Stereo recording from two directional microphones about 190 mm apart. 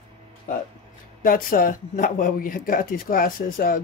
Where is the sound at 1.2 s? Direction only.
50° left (ahead or behind).